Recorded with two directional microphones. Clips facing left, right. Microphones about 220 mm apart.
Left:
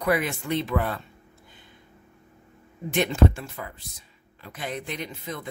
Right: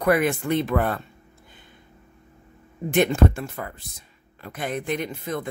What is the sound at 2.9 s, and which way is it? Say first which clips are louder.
Speech: right 3 dB; 50° right (ahead or behind).